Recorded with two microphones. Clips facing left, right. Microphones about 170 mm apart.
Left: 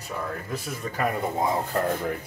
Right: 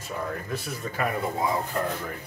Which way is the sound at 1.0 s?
45° left (ahead or behind).